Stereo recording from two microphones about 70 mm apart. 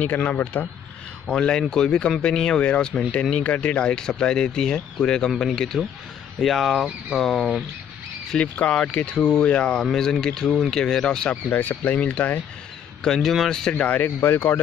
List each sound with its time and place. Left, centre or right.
0.1 s speech: left
1.2 s speech: centre
8.3 s speech: centre
9.8 s speech: centre
11.5 s speech: left
13.0 s speech: centre
13.7 s speech: left
14.0 s speech: left